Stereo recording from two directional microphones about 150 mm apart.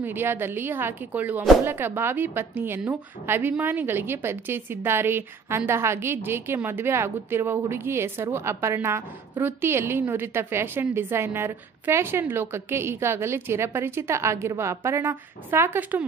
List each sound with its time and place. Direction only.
0.0 s a woman's voice: 15° right (ahead or behind)